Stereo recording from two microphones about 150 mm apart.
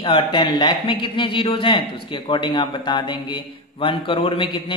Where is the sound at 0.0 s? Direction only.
35° left (ahead or behind).